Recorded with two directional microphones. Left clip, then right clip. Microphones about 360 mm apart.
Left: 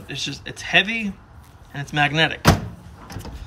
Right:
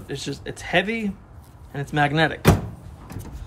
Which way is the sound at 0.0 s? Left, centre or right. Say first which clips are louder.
Left 2 dB; centre.